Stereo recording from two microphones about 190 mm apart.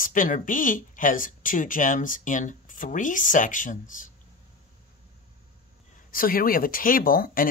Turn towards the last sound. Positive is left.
turn(degrees=50)  # may be behind; listen again after turning